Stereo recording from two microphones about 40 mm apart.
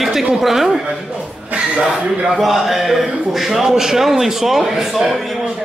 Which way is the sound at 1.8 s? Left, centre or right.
Centre.